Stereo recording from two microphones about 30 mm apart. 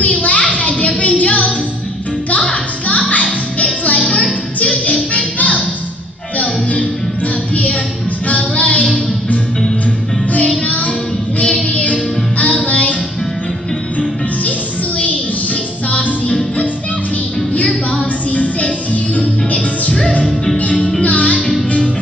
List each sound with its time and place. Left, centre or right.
0.0 s child singing: left
2.3 s music: left
3.5 s music: left
5.1 s music: left
8.3 s music: left
11.7 s music: left
18.3 s music: left
19.1 s music: left
21.0 s music: left